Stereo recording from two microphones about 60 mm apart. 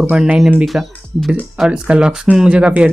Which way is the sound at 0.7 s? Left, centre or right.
Centre.